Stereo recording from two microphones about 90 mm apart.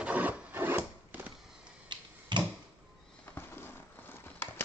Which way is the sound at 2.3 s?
60° right (ahead or behind).